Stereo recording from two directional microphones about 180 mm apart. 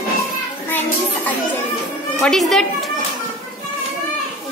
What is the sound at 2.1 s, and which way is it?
Speech, centre (ahead or behind).